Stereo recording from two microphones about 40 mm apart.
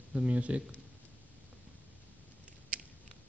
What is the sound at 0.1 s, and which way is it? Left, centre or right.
Speech, right.